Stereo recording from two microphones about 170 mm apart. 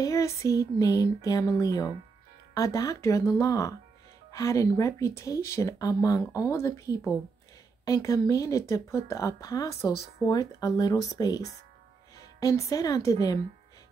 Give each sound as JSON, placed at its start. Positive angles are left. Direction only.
{"t": 0.0, "sound": "a woman's voice", "side_deg": 15}